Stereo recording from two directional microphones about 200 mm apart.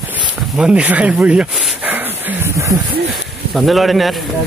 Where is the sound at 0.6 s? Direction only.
5° right (ahead or behind).